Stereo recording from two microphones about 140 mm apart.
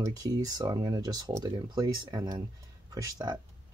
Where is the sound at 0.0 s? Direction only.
25° right (ahead or behind).